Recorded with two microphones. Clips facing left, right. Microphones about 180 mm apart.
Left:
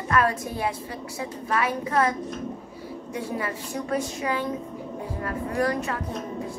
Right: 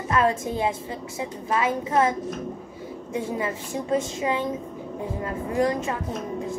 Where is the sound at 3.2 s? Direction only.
25° right (ahead or behind).